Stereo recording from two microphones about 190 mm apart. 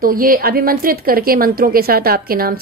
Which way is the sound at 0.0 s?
50° right (ahead or behind).